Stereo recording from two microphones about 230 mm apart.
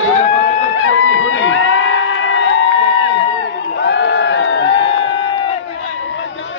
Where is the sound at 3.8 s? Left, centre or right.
Left.